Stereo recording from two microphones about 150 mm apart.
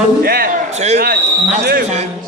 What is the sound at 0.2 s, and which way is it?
Speech, 80° right.